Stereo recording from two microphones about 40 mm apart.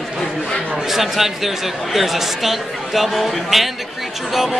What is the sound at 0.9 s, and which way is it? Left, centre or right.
Speech, centre.